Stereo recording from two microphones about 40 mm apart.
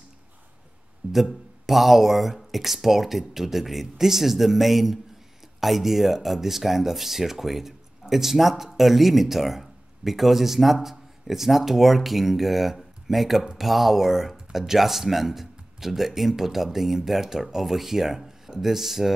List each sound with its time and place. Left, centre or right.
1.0 s speech: right
1.7 s speech: centre